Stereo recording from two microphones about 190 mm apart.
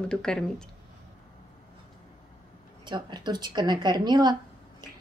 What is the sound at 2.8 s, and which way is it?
A woman's voice, 25° right (ahead or behind).